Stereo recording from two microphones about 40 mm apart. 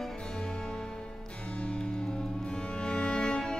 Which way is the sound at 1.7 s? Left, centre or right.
Left.